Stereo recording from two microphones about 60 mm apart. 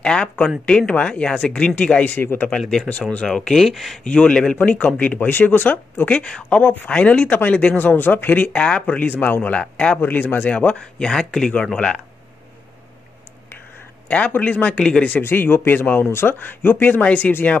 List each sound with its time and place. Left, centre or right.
0.0 s speech: centre
2.1 s speech: left
3.3 s speech: centre
3.6 s speech: centre
4.0 s speech: centre
4.6 s speech: left
9.6 s speech: centre
9.9 s speech: left; by 12.0 s centre
14.0 s speech: left
15.0 s speech: left